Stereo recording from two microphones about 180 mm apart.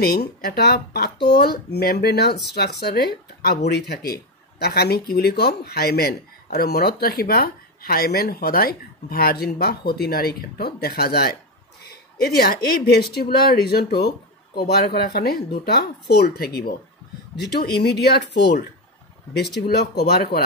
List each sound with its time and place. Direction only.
0.0 s speech: 55° left (ahead or behind)
11.9 s a sound: 60° left (ahead or behind)
12.6 s speech: 55° left (ahead or behind)
19.7 s speech: 60° left (ahead or behind)